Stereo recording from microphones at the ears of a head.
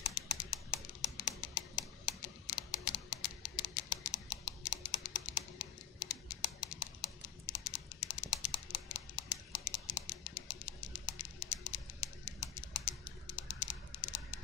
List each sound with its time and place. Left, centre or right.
0.0 s music: left